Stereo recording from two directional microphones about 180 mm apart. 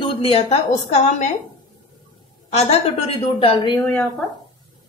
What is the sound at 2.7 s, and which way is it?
A woman's voice, 35° left (ahead or behind).